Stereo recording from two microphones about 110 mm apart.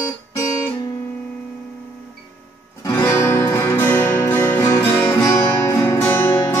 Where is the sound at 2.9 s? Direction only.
25° left (ahead or behind).